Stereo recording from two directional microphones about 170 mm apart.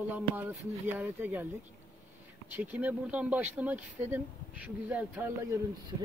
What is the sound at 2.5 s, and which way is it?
Speech, 10° right (ahead or behind).